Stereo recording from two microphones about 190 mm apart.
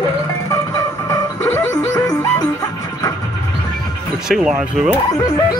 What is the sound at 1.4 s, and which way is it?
Music, 15° left (ahead or behind).